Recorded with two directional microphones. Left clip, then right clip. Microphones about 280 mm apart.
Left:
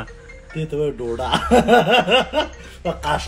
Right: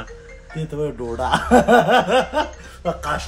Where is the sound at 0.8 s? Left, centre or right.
Centre.